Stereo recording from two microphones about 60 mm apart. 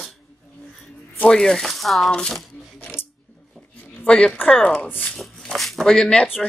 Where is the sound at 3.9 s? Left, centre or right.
Centre.